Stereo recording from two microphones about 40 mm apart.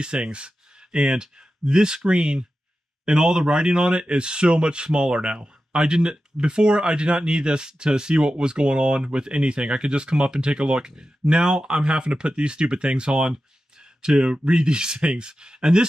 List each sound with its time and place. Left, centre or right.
0.0 s speech: right